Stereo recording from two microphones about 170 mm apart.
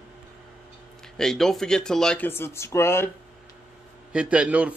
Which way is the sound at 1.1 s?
5° left (ahead or behind).